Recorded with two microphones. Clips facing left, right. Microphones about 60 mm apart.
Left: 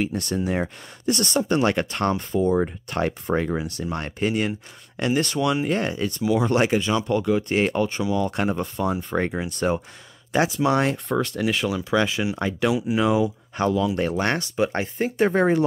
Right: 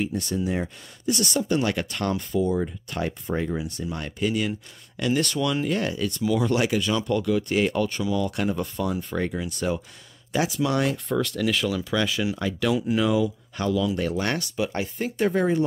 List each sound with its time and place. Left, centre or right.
0.0 s speech: left
2.5 s speech: left
3.9 s speech: left
5.1 s speech: left
5.7 s speech: left
6.5 s speech: left